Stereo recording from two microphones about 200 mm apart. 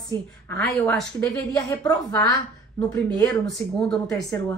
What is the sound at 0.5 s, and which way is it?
A woman's voice, 5° left (ahead or behind).